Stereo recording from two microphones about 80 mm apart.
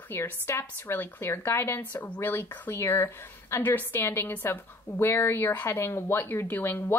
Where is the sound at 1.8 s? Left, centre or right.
Left.